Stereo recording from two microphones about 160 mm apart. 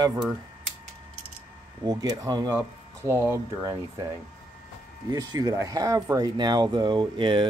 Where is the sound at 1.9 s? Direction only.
25° right (ahead or behind).